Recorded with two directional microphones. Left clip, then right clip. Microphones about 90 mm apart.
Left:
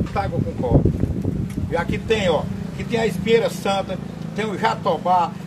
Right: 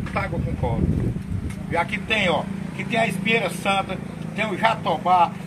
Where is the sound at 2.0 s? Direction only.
35° left (ahead or behind).